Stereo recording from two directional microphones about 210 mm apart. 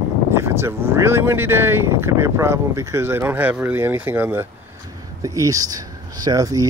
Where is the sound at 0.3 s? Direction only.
10° right (ahead or behind).